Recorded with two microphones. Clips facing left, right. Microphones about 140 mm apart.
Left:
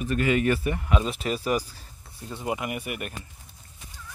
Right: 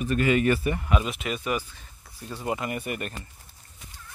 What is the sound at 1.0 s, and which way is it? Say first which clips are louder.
Speech: left 2 dB; 35° left (ahead or behind).